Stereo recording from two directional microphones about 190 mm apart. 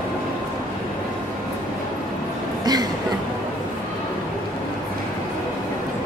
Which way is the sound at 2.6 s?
20° right (ahead or behind).